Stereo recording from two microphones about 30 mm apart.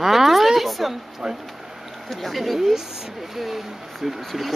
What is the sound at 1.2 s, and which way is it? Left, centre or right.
Speech, right.